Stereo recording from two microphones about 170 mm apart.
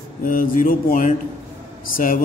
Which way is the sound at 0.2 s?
55° left (ahead or behind).